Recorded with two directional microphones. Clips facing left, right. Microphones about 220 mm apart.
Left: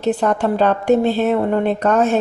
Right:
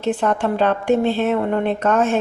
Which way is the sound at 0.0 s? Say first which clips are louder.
Left 2 dB; 40° left (ahead or behind).